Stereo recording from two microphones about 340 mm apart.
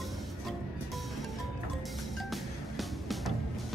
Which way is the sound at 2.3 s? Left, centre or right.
Centre.